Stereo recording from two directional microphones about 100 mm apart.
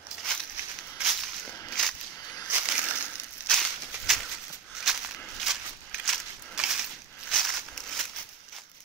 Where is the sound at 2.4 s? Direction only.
15° right (ahead or behind).